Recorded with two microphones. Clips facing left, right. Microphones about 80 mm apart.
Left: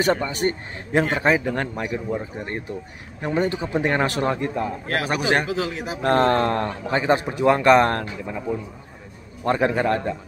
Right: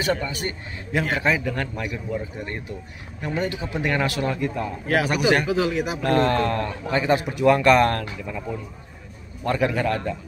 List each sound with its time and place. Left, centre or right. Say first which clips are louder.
0.0 s a man's voice: left 4 dB; left
9.4 s a man's voice: left 2 dB; left